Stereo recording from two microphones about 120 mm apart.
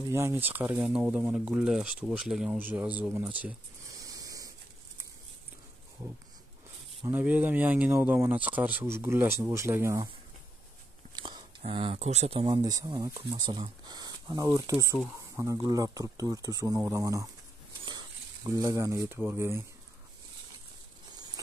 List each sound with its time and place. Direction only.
0.1 s speech: 20° right (ahead or behind); by 2.5 s 5° right (ahead or behind)
2.5 s speech: 15° right (ahead or behind)
3.9 s hiss: 30° right (ahead or behind)
7.1 s speech: 15° right (ahead or behind)
11.1 s a sound: 35° right (ahead or behind)
11.6 s speech: 50° right (ahead or behind)
12.0 s speech: 65° right (ahead or behind)
12.6 s speech: 35° right (ahead or behind)